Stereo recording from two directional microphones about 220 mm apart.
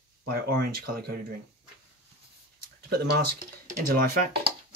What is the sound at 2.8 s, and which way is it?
Speech, 45° right (ahead or behind).